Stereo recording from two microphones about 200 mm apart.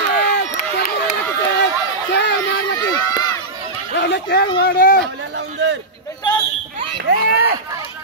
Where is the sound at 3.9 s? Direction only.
60° left (ahead or behind).